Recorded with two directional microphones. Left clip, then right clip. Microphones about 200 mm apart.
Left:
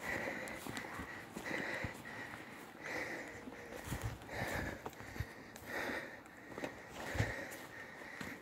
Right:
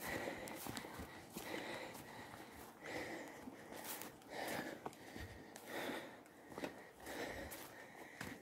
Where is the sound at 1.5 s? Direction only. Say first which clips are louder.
Left 7 dB; 5° right (ahead or behind).